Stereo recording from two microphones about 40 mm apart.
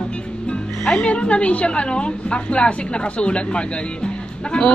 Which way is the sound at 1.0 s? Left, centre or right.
Left.